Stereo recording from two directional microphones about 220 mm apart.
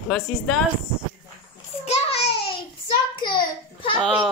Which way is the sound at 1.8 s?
30° left (ahead or behind).